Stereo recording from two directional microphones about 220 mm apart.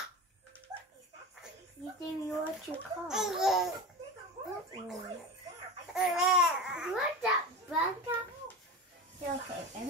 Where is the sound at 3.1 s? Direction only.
Centre (ahead or behind).